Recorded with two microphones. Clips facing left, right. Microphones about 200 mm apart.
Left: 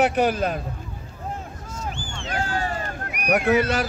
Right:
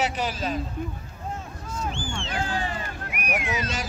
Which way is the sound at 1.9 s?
40° left (ahead or behind).